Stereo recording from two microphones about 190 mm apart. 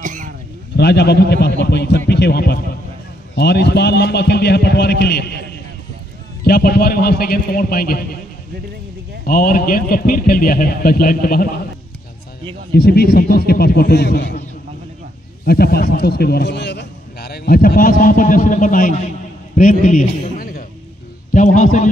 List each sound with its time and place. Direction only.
0.0 s a sound: 45° right (ahead or behind)
0.7 s a man's voice: 60° left (ahead or behind)
6.4 s a man's voice: 55° left (ahead or behind)
9.2 s a man's voice: 50° left (ahead or behind)
12.7 s a man's voice: 55° left (ahead or behind)
15.4 s a man's voice: 55° left (ahead or behind)